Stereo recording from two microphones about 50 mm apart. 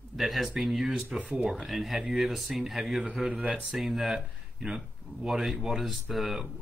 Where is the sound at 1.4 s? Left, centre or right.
Centre.